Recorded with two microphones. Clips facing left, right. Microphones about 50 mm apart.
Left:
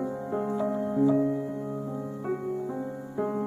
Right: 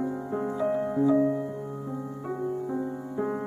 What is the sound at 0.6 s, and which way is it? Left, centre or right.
Music, right.